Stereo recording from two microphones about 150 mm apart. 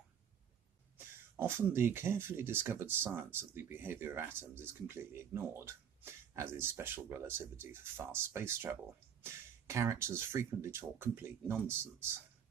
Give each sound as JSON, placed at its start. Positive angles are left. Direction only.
{"t": 0.9, "sound": "throat clearing", "side_deg": -15}
{"t": 1.7, "sound": "speech", "side_deg": -15}